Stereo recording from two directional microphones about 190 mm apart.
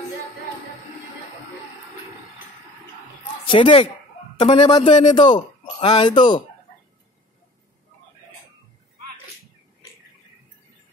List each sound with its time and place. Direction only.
3.4 s a man's voice: 25° left (ahead or behind)